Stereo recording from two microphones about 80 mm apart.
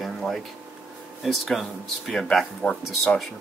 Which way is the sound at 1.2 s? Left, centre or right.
Centre.